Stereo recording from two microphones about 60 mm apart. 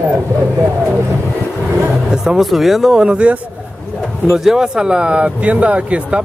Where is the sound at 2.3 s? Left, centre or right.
Centre.